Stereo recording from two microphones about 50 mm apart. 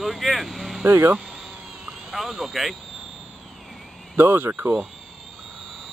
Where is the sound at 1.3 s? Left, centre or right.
Centre.